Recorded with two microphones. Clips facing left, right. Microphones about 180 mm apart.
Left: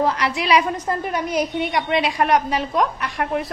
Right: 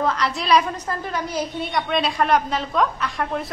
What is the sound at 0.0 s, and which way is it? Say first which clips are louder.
A woman's voice: left 2 dB; 15° left (ahead or behind).